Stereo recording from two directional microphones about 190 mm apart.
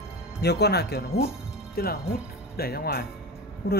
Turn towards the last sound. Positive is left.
turn(degrees=55)  # may be behind; listen again after turning